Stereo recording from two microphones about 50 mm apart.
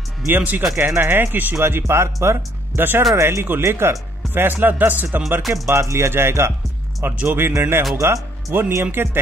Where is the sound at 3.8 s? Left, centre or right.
Right.